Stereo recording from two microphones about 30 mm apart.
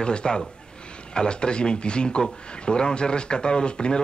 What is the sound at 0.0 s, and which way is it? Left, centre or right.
A man's voice, left.